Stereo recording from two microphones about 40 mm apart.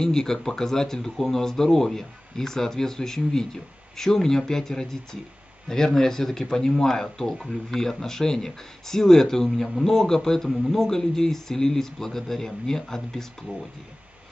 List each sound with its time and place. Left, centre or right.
0.0 s speech: centre